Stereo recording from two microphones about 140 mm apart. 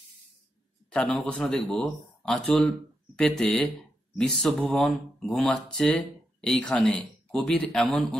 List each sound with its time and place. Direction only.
0.8 s speech: 10° left (ahead or behind)